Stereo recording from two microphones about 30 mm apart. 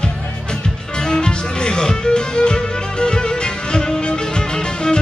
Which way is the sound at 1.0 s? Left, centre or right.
Left.